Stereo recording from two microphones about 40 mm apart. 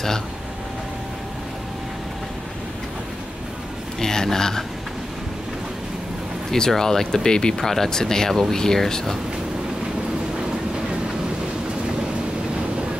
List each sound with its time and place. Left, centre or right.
4.0 s speech: centre
6.5 s speech: centre